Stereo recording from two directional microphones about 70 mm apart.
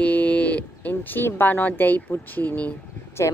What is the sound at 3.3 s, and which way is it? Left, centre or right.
Speech, left.